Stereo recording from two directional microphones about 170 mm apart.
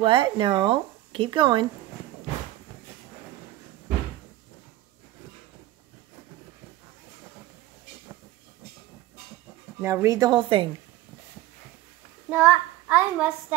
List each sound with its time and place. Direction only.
0.0 s a woman's voice: 30° right (ahead or behind)
9.8 s a woman's voice: 15° right (ahead or behind)
12.3 s child singing: 5° right (ahead or behind)